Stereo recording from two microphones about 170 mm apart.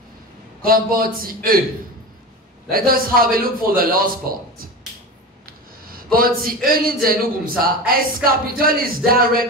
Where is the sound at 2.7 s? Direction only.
60° right (ahead or behind).